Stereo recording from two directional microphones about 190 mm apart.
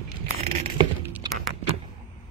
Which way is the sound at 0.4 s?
35° right (ahead or behind).